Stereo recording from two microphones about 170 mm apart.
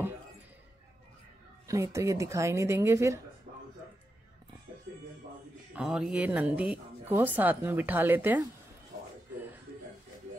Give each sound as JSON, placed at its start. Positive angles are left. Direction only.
{"t": 1.7, "sound": "speech", "side_deg": -15}
{"t": 5.8, "sound": "speech", "side_deg": -5}